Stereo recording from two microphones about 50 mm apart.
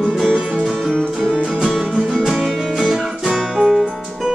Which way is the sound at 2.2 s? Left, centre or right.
Centre.